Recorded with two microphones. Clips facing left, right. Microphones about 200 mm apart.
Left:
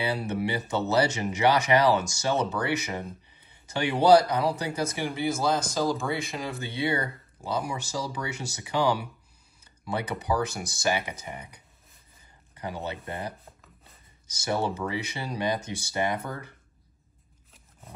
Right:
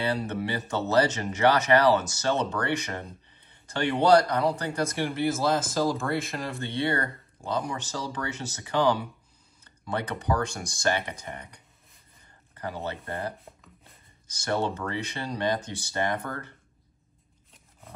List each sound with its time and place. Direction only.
0.0 s speech: 10° left (ahead or behind)